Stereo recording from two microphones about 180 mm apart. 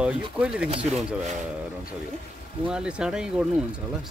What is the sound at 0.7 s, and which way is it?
Speech, 35° right (ahead or behind).